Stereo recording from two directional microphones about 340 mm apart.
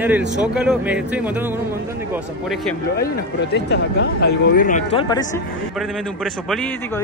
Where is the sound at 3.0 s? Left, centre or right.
Left; by 5.2 s centre.